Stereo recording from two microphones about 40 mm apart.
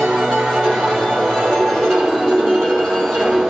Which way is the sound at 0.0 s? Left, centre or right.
Centre.